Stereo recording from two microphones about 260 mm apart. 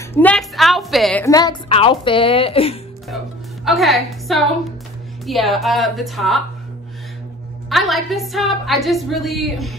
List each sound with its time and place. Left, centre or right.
0.1 s a woman's voice: centre
1.2 s a woman's voice: centre
3.6 s a woman's voice: centre
7.7 s a woman's voice: centre